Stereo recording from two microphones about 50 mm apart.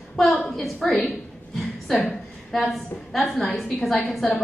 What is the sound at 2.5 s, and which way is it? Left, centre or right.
A woman's voice, centre.